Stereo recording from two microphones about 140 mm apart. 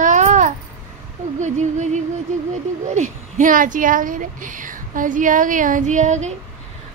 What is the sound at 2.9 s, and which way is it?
A woman's voice, 65° right (ahead or behind).